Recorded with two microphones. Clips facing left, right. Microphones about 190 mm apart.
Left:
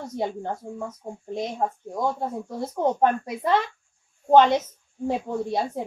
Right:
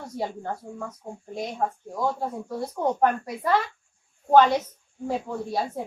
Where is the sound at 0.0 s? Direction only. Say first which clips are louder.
Left 3 dB; 20° left (ahead or behind).